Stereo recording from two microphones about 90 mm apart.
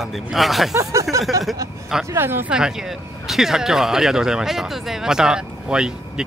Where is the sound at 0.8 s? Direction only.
35° right (ahead or behind).